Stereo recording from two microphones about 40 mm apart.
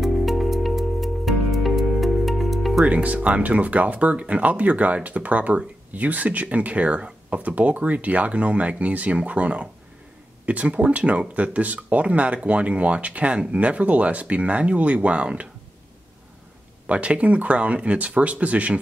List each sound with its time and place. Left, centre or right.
0.0 s music: centre
2.8 s speech: right
16.8 s speech: right